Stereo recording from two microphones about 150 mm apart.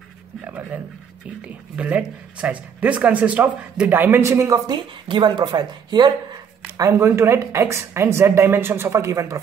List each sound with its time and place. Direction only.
1.8 s speech: 10° right (ahead or behind); by 6.1 s 30° right (ahead or behind)
6.8 s speech: 20° right (ahead or behind)